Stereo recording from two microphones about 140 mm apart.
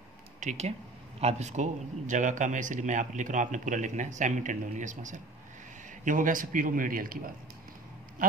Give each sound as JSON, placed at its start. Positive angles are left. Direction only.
{"t": 0.4, "sound": "speech", "side_deg": -55}
{"t": 6.0, "sound": "a man's voice", "side_deg": -70}